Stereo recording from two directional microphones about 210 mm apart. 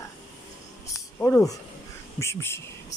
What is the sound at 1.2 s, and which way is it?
Speech, 15° left (ahead or behind).